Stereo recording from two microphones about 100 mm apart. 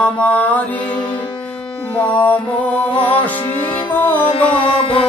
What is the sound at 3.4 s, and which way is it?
Music, 55° left (ahead or behind).